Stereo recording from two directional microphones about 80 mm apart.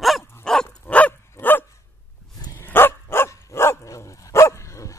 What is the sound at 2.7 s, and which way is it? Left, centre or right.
Dog, left.